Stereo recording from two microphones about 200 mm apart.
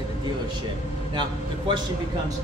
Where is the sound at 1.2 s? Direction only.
25° right (ahead or behind).